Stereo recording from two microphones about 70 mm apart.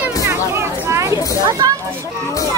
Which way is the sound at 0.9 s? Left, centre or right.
Right.